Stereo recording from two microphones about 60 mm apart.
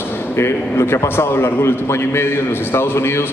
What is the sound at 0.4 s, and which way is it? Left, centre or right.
A man's voice, left.